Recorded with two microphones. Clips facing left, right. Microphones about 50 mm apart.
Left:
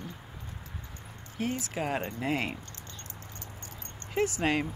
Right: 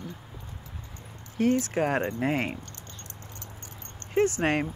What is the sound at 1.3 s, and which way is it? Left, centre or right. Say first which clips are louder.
Speech: right 8 dB; right.